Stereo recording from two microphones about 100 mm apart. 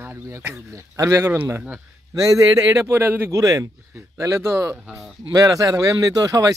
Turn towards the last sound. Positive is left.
turn(degrees=-35)  # may be behind; listen again after turning